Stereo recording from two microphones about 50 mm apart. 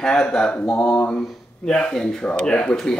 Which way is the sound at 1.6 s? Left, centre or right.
Centre.